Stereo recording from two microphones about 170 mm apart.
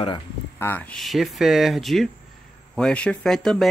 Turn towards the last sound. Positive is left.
turn(degrees=0)  # may be behind; listen again after turning